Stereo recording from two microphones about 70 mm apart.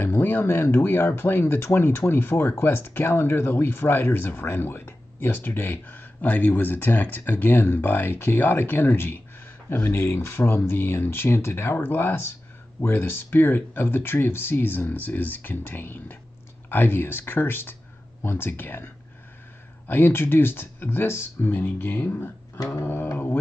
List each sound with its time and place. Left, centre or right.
0.0 s speech: left
10.1 s speech: left
19.9 s speech: left
22.6 s mantra: left
22.8 s speech: left